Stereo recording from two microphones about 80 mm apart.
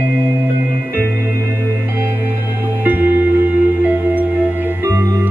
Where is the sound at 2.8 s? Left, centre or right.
Right.